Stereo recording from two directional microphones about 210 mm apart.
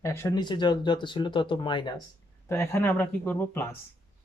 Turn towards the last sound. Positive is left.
turn(degrees=10)  # may be behind; listen again after turning